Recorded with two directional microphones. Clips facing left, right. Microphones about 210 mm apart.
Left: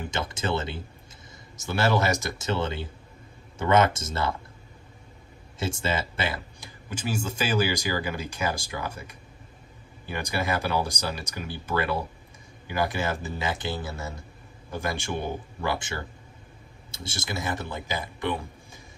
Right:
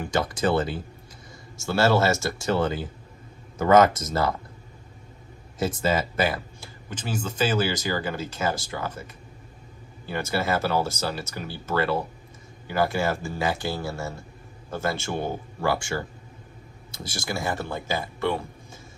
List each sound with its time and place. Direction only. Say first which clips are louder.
0.1 s speech: right 6 dB; 25° left (ahead or behind)
5.6 s speech: right 4 dB; 25° left (ahead or behind)
6.9 s speech: left 1 dB; 10° left (ahead or behind)
16.9 s speech: right 2 dB; 25° left (ahead or behind)